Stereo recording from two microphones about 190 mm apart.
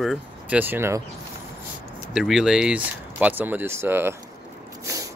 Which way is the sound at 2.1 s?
Centre (ahead or behind).